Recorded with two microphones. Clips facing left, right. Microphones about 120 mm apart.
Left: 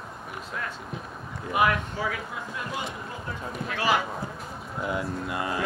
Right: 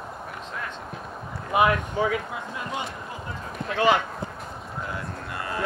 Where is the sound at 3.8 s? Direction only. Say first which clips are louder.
Right 4 dB; 5° left (ahead or behind).